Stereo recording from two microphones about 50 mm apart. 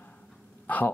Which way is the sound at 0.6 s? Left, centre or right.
Left.